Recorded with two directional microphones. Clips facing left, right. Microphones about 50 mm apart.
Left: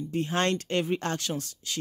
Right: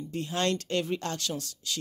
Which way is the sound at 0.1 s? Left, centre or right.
Left.